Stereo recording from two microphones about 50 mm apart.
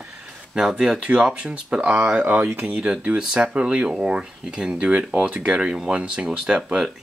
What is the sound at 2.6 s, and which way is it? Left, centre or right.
Speech, right.